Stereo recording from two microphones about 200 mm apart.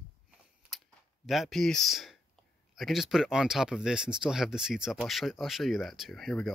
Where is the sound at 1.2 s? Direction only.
Centre (ahead or behind).